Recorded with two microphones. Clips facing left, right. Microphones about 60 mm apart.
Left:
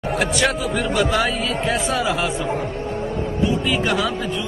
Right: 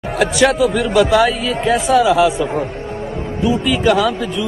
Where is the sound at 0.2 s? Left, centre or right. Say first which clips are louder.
Right 9 dB; centre.